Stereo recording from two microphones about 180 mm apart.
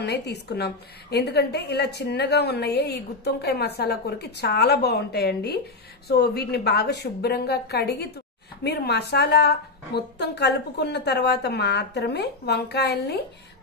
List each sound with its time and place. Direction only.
0.0 s a woman's voice: 70° left (ahead or behind)